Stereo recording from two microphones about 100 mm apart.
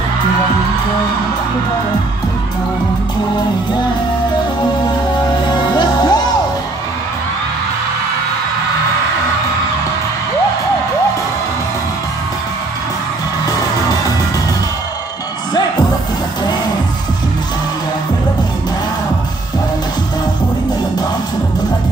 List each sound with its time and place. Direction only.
5.5 s music: 45° left (ahead or behind)